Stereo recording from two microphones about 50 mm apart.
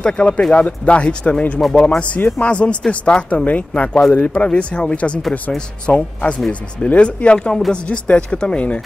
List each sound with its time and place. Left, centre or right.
0.0 s speech: centre
0.5 s speech: left
1.6 s speech: centre
2.0 s speech: left